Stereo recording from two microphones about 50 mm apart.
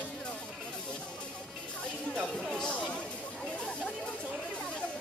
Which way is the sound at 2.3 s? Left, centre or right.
Centre.